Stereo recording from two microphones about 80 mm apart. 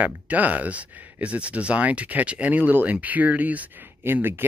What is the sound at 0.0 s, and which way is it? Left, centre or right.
Speech, centre.